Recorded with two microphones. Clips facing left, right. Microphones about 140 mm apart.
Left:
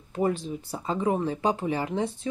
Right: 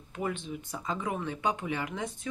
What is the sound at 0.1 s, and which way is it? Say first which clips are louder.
Speech: left 8 dB; 35° left (ahead or behind).